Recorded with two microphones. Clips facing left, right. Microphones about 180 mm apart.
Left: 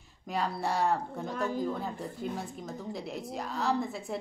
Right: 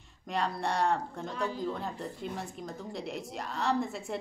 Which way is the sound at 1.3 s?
50° left (ahead or behind).